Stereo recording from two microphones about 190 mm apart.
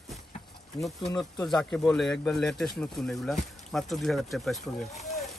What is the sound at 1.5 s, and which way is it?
Speech, 5° left (ahead or behind).